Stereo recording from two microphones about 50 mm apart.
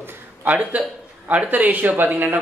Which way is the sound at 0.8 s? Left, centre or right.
Right.